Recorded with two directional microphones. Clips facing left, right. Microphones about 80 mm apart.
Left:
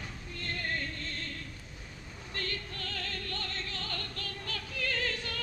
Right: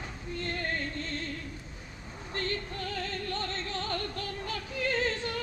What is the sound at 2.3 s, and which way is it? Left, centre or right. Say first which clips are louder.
Female singing: right 5 dB; right.